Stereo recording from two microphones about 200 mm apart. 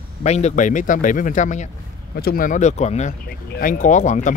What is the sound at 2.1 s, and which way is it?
Speech, 50° left (ahead or behind).